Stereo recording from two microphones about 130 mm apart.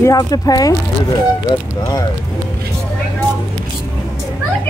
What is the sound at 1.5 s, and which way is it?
Speech, 40° left (ahead or behind).